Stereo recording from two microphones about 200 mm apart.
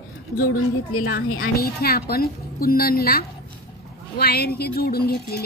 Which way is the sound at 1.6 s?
50° left (ahead or behind).